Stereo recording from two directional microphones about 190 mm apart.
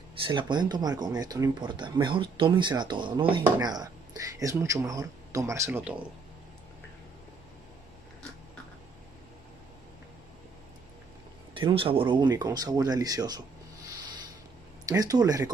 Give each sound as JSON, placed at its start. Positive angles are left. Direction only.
{"t": 0.1, "sound": "speech", "side_deg": -25}
{"t": 11.5, "sound": "speech", "side_deg": -25}
{"t": 14.9, "sound": "speech", "side_deg": -20}